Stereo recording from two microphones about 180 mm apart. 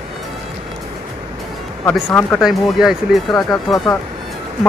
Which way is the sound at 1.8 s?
10° left (ahead or behind).